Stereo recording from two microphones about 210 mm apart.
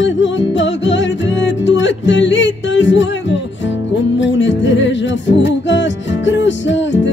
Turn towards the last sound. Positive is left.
turn(degrees=60)  # may be behind; listen again after turning